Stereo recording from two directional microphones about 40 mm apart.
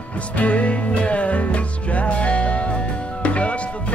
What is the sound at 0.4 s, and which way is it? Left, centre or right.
Music, left.